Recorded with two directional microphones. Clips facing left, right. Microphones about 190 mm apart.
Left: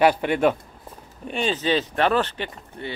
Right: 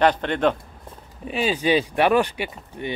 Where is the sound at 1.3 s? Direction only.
5° right (ahead or behind).